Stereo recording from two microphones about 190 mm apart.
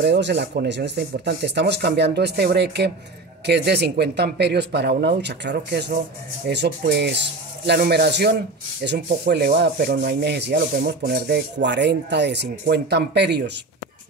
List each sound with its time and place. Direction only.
0.0 s speech: 65° right (ahead or behind)
11.0 s speech: 50° right (ahead or behind)